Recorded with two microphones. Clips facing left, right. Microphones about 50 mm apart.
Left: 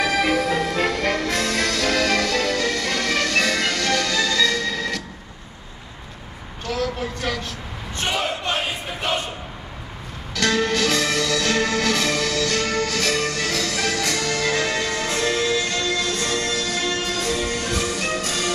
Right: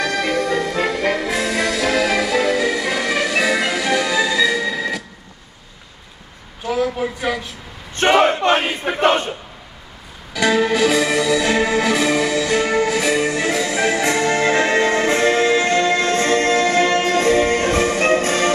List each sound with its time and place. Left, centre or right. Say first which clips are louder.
0.0 s music: even; centre
6.6 s a sound: right 5 dB; centre
7.9 s battle cry: right 10 dB; right
10.3 s music: right 4 dB; centre; by 18.5 s right